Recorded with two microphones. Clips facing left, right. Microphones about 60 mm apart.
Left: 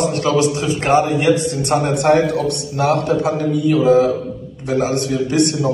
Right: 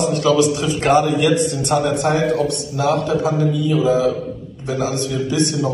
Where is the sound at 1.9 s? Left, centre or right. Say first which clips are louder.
Left 3 dB; left.